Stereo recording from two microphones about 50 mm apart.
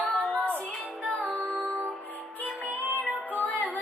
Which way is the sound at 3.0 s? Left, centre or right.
Left.